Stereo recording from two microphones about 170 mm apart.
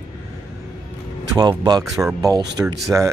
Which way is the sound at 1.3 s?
25° right (ahead or behind).